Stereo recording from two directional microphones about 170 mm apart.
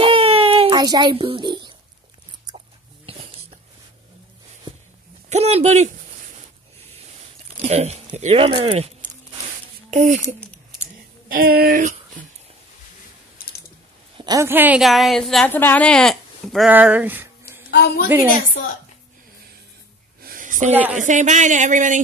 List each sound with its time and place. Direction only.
0.0 s music: 30° right (ahead or behind)
3.1 s a sound: 35° right (ahead or behind)
5.3 s speech: 40° right (ahead or behind)
7.6 s speech: 40° right (ahead or behind)
11.2 s speech: 60° right (ahead or behind)
14.1 s speech: 20° right (ahead or behind)
14.8 s a woman's voice: centre (ahead or behind)
16.7 s a sound: 10° right (ahead or behind)
17.6 s a woman's voice: 75° left (ahead or behind)
18.0 s a woman's voice: 10° right (ahead or behind)
20.2 s a sound: 55° right (ahead or behind)
20.7 s a woman's voice: 10° right (ahead or behind)
21.0 s speech: 45° right (ahead or behind)